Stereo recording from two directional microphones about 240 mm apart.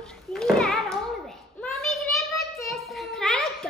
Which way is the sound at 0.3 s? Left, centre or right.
Centre.